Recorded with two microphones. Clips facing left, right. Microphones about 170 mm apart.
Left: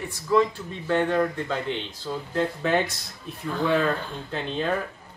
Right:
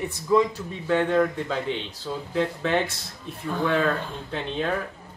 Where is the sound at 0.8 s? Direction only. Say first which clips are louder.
Right 1 dB; centre (ahead or behind).